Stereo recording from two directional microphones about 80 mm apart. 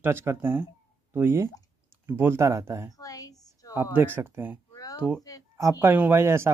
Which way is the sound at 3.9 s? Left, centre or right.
Right.